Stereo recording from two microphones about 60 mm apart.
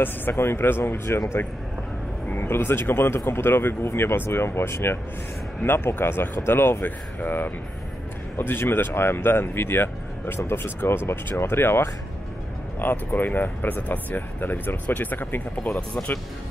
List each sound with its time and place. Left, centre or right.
0.0 s speech: left
2.2 s speech: left